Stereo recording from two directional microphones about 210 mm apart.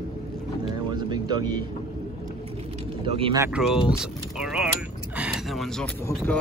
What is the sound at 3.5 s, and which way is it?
Speech, centre (ahead or behind).